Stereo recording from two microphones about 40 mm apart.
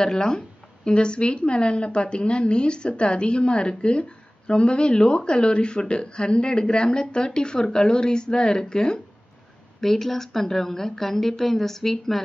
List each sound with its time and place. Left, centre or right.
0.0 s a woman's voice: centre
9.8 s a woman's voice: centre